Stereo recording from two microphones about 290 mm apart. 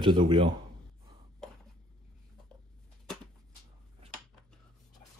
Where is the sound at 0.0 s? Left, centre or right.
Centre.